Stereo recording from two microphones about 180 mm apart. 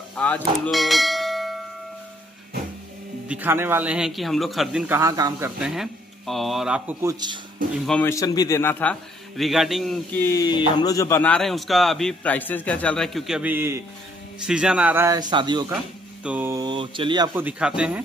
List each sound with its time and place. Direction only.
0.2 s bell: 5° left (ahead or behind)
3.3 s speech: 10° right (ahead or behind)
5.6 s speech: centre (ahead or behind); by 7.3 s 20° right (ahead or behind)
7.8 s speech: 5° left (ahead or behind)
8.1 s a man's voice: 20° left (ahead or behind)
9.4 s speech: centre (ahead or behind)
10.1 s a man's voice: 15° left (ahead or behind); by 15.1 s 10° right (ahead or behind)
15.1 s speech: 25° right (ahead or behind)
16.3 s speech: 10° right (ahead or behind)
16.6 s speech: 30° right (ahead or behind)
17.3 s speech: 10° right (ahead or behind)